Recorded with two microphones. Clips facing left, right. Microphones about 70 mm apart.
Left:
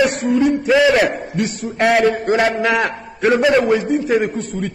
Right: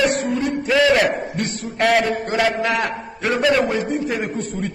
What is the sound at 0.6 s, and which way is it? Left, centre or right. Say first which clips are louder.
Speech: even; centre.